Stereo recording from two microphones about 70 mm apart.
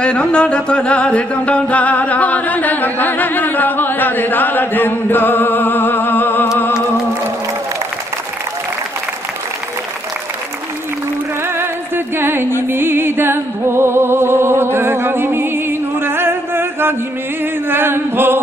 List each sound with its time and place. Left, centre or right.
0.0 s music: centre
11.5 s music: right
17.6 s chant: right